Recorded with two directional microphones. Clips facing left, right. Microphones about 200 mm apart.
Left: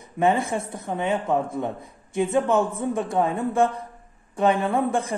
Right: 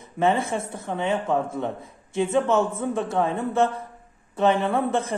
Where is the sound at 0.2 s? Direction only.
15° left (ahead or behind).